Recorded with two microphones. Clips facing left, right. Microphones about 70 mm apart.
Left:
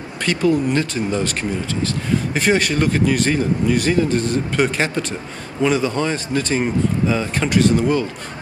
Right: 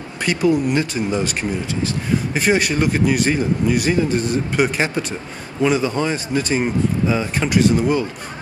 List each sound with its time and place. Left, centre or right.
0.2 s speech: centre
2.3 s speech: centre